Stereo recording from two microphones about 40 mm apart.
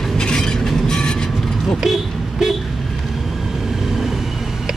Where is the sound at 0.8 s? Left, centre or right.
Centre.